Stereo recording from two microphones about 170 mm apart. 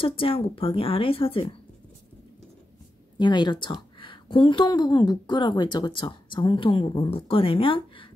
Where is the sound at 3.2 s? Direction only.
25° left (ahead or behind).